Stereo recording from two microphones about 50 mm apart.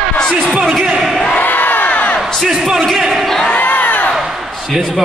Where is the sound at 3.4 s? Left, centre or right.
Left.